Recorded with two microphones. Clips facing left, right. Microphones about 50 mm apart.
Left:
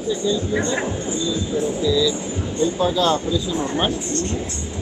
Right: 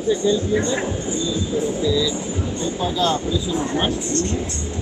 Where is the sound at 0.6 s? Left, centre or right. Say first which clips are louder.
Even; left.